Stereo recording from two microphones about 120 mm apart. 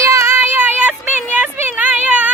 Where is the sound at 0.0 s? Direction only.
25° right (ahead or behind).